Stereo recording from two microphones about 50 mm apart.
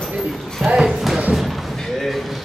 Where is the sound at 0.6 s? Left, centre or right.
Centre.